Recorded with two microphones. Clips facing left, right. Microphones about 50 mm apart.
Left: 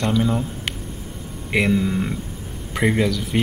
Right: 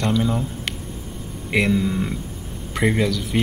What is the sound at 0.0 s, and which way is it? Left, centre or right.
Speech, centre.